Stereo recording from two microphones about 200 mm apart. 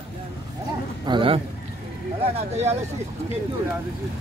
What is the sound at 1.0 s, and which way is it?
Speech, 25° right (ahead or behind).